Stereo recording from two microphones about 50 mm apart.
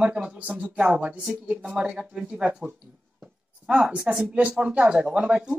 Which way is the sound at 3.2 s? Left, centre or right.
Centre.